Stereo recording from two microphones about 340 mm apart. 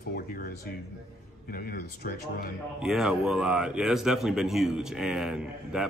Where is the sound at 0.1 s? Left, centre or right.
Left.